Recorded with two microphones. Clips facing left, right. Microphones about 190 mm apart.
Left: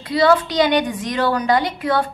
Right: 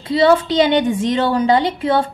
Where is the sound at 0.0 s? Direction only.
25° right (ahead or behind).